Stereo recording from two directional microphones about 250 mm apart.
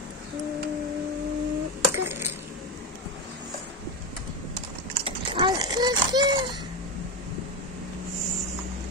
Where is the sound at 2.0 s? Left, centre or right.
Centre.